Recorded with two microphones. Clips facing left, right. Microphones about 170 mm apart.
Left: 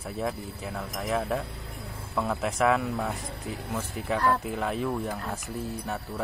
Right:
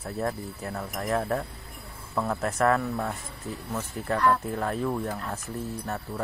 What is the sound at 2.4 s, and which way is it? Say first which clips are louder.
Speech: right 1 dB; 10° left (ahead or behind).